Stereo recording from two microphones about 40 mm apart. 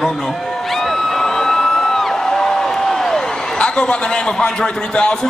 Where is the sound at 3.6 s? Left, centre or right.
Left.